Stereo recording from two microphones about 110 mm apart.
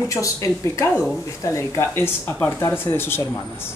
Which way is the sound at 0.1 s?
30° left (ahead or behind).